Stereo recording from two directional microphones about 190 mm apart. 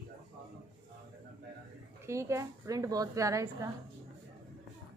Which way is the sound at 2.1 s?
15° right (ahead or behind).